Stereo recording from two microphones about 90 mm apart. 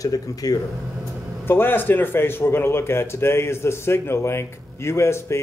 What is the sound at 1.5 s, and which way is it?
A man's voice, 25° left (ahead or behind).